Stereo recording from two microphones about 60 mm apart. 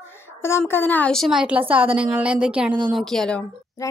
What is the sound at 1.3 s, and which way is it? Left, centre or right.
A woman's voice, right.